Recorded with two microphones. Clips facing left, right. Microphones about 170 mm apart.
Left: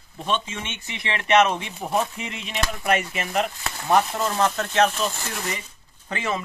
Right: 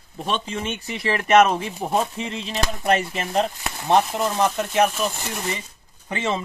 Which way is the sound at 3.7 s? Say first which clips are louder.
Even; 15° right (ahead or behind).